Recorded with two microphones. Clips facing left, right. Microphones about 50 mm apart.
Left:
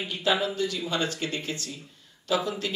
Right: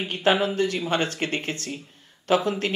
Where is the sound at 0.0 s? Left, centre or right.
Right.